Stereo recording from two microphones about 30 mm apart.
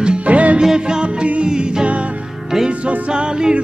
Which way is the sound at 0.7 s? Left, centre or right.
Right.